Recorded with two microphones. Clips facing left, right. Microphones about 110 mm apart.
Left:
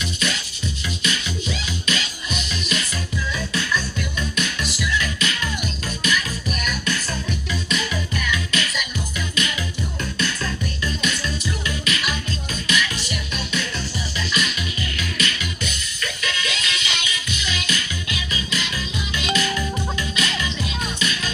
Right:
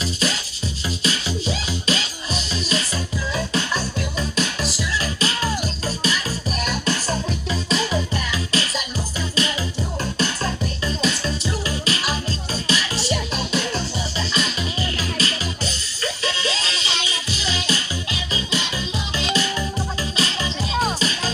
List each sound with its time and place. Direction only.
0.0 s music: 35° right (ahead or behind)
10.1 s music: 30° right (ahead or behind)